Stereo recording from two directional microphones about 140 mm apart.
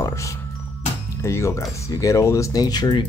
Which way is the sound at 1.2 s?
20° left (ahead or behind).